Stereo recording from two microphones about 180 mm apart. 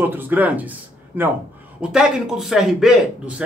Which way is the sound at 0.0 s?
10° right (ahead or behind).